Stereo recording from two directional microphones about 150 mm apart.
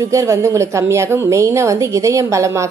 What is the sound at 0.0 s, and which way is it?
A woman's voice, 20° right (ahead or behind).